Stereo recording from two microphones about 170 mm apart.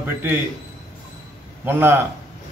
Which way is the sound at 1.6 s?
10° right (ahead or behind).